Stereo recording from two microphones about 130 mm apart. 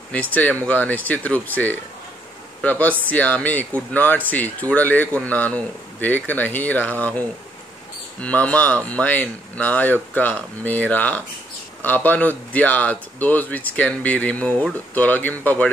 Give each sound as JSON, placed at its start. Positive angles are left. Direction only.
{"t": 0.1, "sound": "speech", "side_deg": 10}